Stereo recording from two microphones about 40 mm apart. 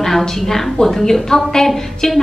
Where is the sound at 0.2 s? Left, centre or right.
Centre.